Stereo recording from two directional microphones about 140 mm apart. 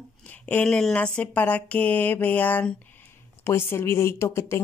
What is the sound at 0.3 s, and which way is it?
Speech, 10° left (ahead or behind).